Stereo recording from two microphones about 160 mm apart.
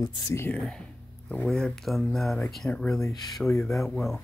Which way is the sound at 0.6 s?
5° left (ahead or behind).